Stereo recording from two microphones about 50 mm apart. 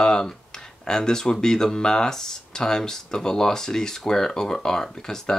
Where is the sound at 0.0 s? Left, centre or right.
Centre.